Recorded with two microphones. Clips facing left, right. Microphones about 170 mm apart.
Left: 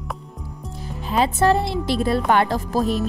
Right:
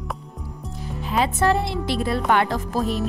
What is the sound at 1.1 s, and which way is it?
Speech, 35° left (ahead or behind).